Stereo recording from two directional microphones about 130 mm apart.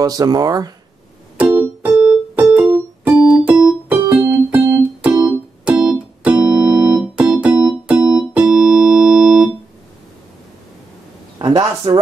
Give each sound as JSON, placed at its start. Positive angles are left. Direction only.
{"t": 0.0, "sound": "speech", "side_deg": -30}
{"t": 1.4, "sound": "keyboard", "side_deg": -10}
{"t": 4.1, "sound": "music", "side_deg": -10}
{"t": 4.6, "sound": "keyboard", "side_deg": -15}
{"t": 6.4, "sound": "organ", "side_deg": -30}
{"t": 7.0, "sound": "keyboard", "side_deg": -10}
{"t": 11.3, "sound": "a sound", "side_deg": -35}